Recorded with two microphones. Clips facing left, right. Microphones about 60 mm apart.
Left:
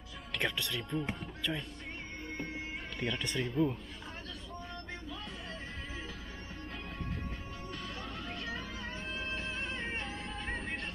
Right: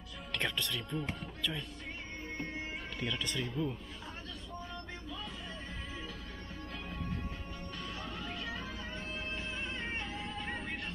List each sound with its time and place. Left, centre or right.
0.3 s speech: centre
3.0 s speech: centre
3.3 s speech: centre
8.0 s music: centre